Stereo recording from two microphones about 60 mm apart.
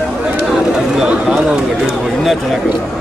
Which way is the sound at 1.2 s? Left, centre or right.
Centre.